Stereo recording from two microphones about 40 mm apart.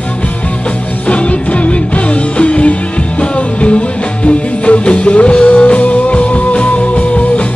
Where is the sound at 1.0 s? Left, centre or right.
Left.